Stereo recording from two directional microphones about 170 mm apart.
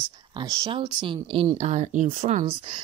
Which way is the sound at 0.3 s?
30° right (ahead or behind).